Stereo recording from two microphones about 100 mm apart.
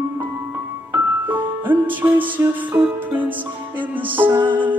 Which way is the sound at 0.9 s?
20° right (ahead or behind).